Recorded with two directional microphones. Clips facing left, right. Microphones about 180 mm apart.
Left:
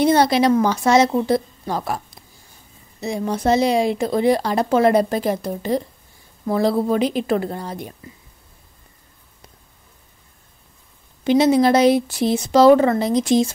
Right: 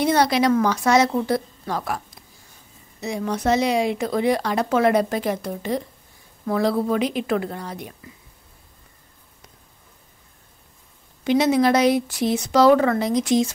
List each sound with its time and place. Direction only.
0.0 s speech: 30° left (ahead or behind)
3.0 s speech: 30° left (ahead or behind)
11.2 s speech: 30° left (ahead or behind)